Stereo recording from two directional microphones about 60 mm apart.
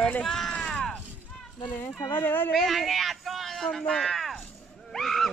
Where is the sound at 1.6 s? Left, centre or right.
Left.